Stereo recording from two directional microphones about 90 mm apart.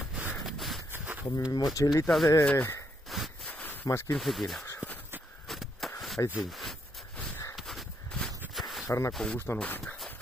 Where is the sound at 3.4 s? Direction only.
20° left (ahead or behind).